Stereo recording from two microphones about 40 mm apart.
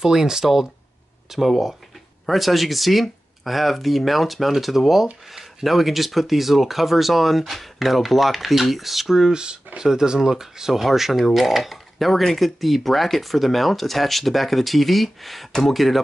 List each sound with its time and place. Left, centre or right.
0.0 s speech: centre
9.3 s speech: right; by 16.0 s centre